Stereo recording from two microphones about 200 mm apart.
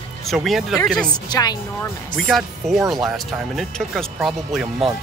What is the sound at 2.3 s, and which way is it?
Speech, centre (ahead or behind).